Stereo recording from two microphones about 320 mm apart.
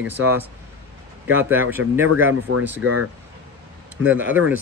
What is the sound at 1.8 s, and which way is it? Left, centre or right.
Speech, right.